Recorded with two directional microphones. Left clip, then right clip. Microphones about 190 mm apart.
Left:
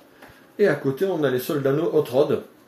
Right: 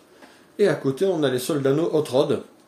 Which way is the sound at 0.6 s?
15° right (ahead or behind).